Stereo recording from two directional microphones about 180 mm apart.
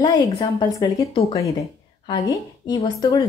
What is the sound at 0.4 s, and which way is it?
A woman's voice, 20° left (ahead or behind).